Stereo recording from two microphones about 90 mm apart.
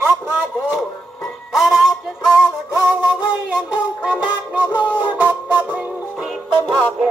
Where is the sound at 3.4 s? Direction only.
10° right (ahead or behind).